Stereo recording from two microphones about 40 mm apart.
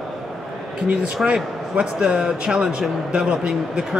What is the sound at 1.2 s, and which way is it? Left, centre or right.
Speech, centre.